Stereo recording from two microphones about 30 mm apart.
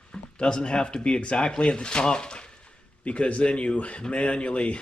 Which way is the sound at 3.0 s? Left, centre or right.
Left.